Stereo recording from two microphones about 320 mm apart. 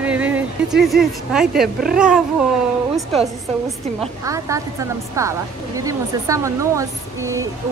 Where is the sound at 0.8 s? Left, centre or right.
Centre.